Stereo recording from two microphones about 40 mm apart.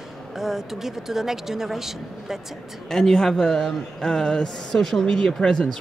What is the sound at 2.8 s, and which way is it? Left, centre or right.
Speech, centre.